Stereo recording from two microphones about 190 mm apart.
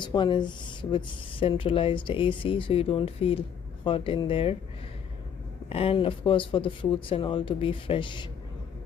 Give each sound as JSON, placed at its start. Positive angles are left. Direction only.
{"t": 0.0, "sound": "speech", "side_deg": 25}
{"t": 5.7, "sound": "speech", "side_deg": 30}